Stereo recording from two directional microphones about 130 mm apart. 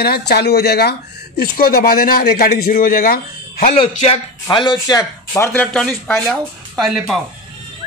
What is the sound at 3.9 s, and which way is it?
Speech, 65° left (ahead or behind).